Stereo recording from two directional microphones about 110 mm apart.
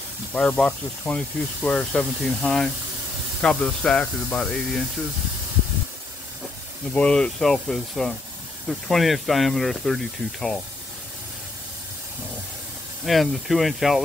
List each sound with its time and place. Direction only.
0.3 s speech: 10° left (ahead or behind)
6.9 s speech: 10° left (ahead or behind)
13.0 s speech: centre (ahead or behind)